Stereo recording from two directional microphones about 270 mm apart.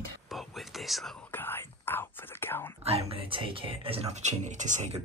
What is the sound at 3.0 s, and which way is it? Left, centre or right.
Speech, centre.